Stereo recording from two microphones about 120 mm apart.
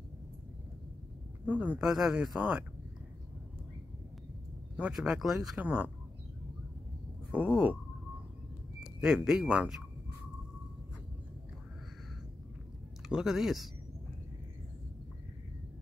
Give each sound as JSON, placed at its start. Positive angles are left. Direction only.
{"t": 1.4, "sound": "speech", "side_deg": -15}
{"t": 4.7, "sound": "speech", "side_deg": -5}
{"t": 7.2, "sound": "speech", "side_deg": -10}
{"t": 9.0, "sound": "speech", "side_deg": -5}
{"t": 13.1, "sound": "speech", "side_deg": -5}